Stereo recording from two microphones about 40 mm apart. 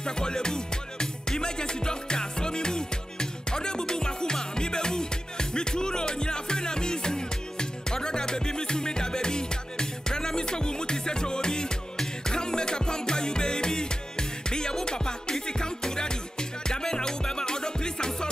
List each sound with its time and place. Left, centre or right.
0.0 s music: centre